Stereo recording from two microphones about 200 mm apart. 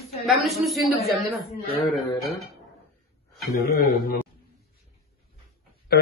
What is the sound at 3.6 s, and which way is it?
Speech, 50° left (ahead or behind).